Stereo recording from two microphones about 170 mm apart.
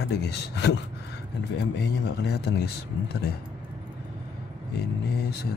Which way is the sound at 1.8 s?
80° left.